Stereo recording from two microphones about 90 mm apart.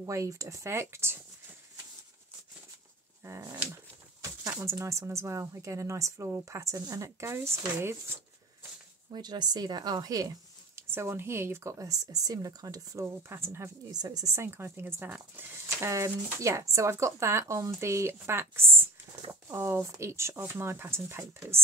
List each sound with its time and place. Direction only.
0.0 s speech: 35° right (ahead or behind)
3.3 s speech: 35° right (ahead or behind)
9.1 s a woman's voice: 50° right (ahead or behind)
10.8 s speech: 30° right (ahead or behind)
11.8 s speech: 40° right (ahead or behind)
13.0 s speech: 25° right (ahead or behind)
13.9 s speech: 45° right (ahead or behind); by 21.5 s 30° right (ahead or behind)